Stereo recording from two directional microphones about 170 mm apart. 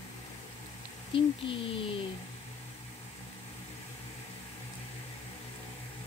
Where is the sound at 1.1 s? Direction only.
30° left (ahead or behind).